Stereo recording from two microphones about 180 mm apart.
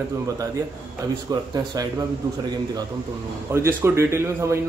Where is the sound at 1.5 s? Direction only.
20° right (ahead or behind).